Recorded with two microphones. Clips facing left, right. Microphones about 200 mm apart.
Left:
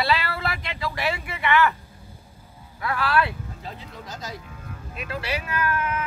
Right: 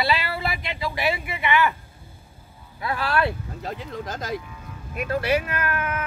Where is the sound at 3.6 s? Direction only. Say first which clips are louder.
Right 9 dB; 90° right.